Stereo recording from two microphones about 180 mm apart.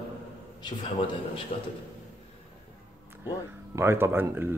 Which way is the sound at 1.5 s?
50° left (ahead or behind).